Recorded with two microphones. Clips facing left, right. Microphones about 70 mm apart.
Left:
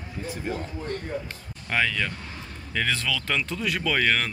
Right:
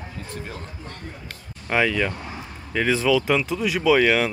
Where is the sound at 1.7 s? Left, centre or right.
Centre.